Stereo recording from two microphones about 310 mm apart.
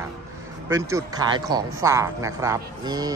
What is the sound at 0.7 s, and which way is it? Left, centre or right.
Speech, centre.